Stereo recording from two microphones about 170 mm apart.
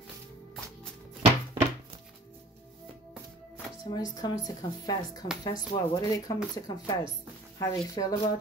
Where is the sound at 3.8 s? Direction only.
25° left (ahead or behind).